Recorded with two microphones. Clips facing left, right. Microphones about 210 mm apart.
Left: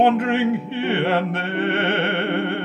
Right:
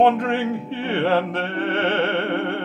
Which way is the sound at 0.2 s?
75° left (ahead or behind).